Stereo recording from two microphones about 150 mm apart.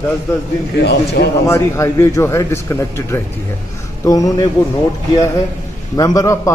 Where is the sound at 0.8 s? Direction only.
90° left.